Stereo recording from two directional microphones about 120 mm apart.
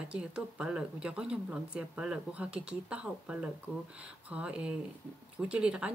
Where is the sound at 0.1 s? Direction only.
10° right (ahead or behind).